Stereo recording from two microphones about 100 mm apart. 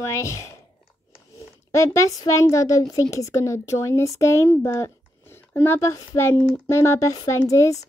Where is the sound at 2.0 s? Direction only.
35° left (ahead or behind).